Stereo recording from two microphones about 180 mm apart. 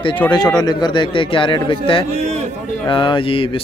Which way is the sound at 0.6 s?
25° left (ahead or behind).